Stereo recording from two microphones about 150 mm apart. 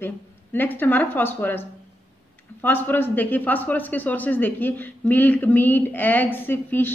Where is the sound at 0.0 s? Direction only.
15° left (ahead or behind).